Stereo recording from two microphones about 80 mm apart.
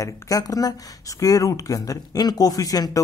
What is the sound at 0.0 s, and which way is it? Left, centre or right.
Speech, left.